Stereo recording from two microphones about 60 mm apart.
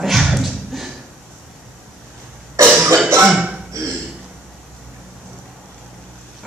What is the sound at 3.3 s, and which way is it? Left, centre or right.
Hiccup, centre.